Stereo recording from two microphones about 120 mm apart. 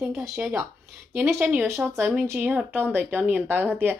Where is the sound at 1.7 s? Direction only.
20° right (ahead or behind).